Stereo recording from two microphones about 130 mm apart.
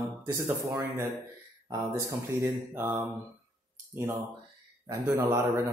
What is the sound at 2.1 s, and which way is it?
Speech, 20° right (ahead or behind).